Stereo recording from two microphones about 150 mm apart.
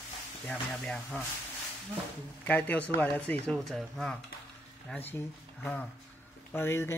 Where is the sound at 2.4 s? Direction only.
10° left (ahead or behind).